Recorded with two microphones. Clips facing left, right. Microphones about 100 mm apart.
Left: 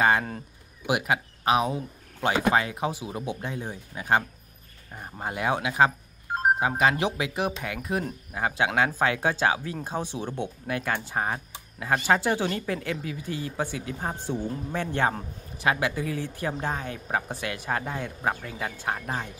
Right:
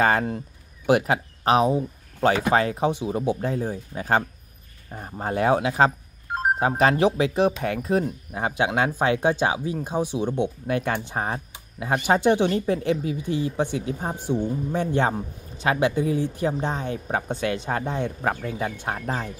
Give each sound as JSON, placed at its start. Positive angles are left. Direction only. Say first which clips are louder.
{"t": 0.8, "sound": "speech", "louder": "right 6 dB", "side_deg": -40}
{"t": 5.2, "sound": "speech", "louder": "right 6 dB", "side_deg": -35}
{"t": 11.8, "sound": "speech", "louder": "right 3 dB", "side_deg": -20}
{"t": 18.3, "sound": "speech", "louder": "right 5 dB", "side_deg": -35}